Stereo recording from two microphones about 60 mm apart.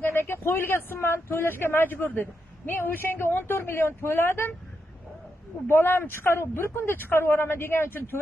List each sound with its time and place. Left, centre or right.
0.0 s a sound: left
0.9 s a man's voice: left
5.7 s a man's voice: left